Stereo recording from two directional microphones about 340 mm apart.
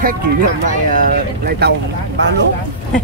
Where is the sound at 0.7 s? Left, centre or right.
Right.